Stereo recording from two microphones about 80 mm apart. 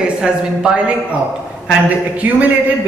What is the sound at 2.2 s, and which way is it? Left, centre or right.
Speech, right.